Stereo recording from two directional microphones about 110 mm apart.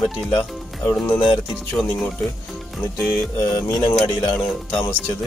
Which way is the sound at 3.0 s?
10° left (ahead or behind).